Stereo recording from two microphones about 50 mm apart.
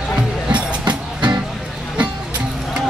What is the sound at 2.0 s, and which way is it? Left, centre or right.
Music, right.